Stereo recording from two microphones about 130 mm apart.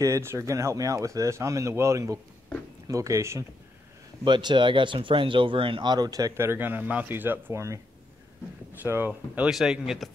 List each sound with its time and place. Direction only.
0.0 s speech: 20° right (ahead or behind)
4.2 s speech: 35° right (ahead or behind)
8.8 s speech: 15° right (ahead or behind)
9.5 s speech: 5° right (ahead or behind)